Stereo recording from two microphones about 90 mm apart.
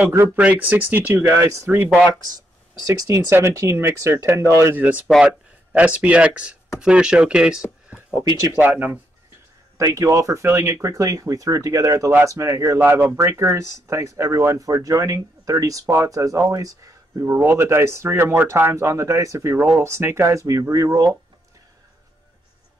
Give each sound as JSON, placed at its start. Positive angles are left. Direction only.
{"t": 0.4, "sound": "speech", "side_deg": -15}
{"t": 2.9, "sound": "speech", "side_deg": -35}
{"t": 4.7, "sound": "speech", "side_deg": -15}
{"t": 8.2, "sound": "speech", "side_deg": -35}
{"t": 8.5, "sound": "speech", "side_deg": -20}
{"t": 9.8, "sound": "speech", "side_deg": -35}
{"t": 12.8, "sound": "speech", "side_deg": -25}
{"t": 17.3, "sound": "speech", "side_deg": -25}